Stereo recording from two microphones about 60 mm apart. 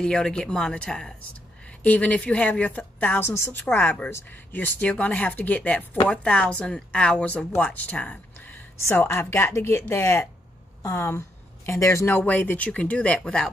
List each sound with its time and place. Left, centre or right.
0.0 s a woman's voice: centre
1.8 s speech: left
8.8 s speech: left
10.8 s speech: left
11.6 s speech: left
12.1 s speech: left